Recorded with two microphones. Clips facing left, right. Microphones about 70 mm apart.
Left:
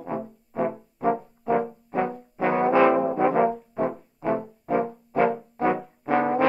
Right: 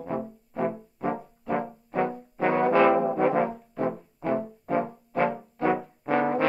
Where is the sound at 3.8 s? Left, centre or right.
Centre.